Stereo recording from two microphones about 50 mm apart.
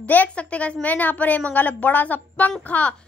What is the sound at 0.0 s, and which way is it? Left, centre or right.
A woman's voice, left.